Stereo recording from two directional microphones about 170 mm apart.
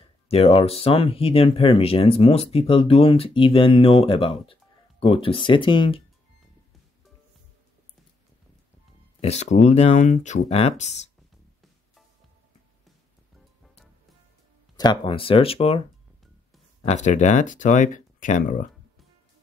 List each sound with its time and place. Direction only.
0.3 s speech: 35° left (ahead or behind)
9.2 s speech: 40° left (ahead or behind)
14.8 s speech: 30° left (ahead or behind)
16.8 s speech: 45° left (ahead or behind)